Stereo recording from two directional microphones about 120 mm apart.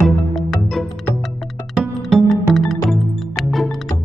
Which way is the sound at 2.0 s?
Centre (ahead or behind).